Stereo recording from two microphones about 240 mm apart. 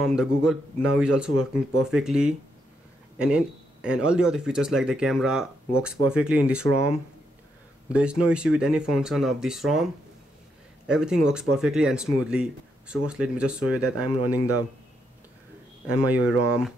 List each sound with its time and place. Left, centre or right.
0.0 s speech: centre
7.9 s speech: centre
10.9 s speech: centre
14.0 s a man's voice: centre
16.1 s speech: centre